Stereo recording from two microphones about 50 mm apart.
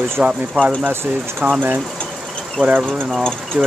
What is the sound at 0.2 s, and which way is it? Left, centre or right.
Speech, right.